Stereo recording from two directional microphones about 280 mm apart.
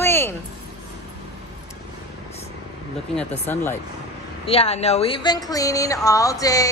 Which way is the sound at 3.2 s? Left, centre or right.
Centre.